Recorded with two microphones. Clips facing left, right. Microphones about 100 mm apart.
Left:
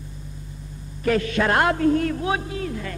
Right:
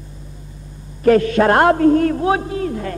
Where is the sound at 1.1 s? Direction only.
45° right (ahead or behind).